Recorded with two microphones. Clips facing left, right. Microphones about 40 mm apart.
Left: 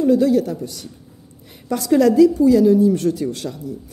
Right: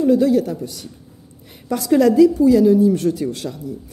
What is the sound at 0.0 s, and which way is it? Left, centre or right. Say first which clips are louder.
A woman's voice: even; centre.